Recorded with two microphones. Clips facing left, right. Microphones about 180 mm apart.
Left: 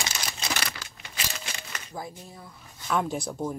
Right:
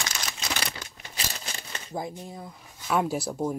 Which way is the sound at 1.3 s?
35° right (ahead or behind).